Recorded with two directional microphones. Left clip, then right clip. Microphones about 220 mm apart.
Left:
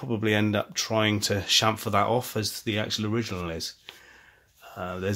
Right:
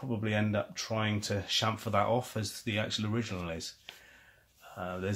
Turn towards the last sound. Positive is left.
turn(degrees=30)  # may be behind; listen again after turning